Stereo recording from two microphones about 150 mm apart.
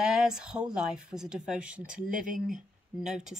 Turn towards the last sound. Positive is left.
turn(degrees=-55)  # may be behind; listen again after turning